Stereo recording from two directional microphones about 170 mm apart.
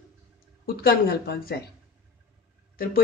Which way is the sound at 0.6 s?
65° left (ahead or behind).